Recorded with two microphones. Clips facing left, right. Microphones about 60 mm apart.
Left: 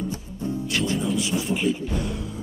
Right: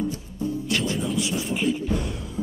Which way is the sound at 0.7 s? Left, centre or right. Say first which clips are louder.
Left 3 dB; centre.